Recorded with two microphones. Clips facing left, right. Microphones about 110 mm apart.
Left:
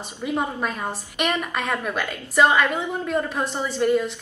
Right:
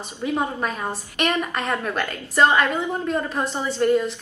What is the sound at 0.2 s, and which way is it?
A woman's voice, 5° left (ahead or behind).